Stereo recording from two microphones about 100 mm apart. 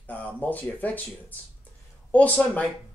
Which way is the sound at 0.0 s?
15° left (ahead or behind).